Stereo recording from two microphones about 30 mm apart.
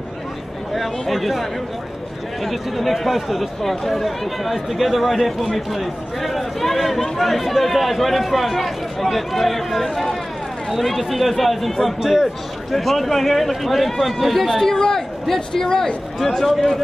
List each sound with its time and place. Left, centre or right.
1.0 s speech: centre